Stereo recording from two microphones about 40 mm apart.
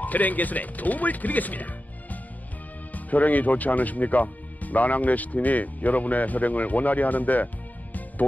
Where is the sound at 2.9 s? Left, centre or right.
Left.